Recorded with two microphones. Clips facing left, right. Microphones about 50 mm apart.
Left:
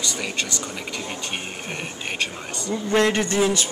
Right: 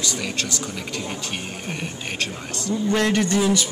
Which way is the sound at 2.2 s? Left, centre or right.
Centre.